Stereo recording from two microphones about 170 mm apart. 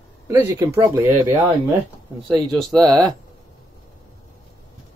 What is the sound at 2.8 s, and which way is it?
Speech, 25° right (ahead or behind).